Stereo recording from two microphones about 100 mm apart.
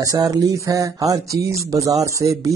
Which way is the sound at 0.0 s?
35° right (ahead or behind).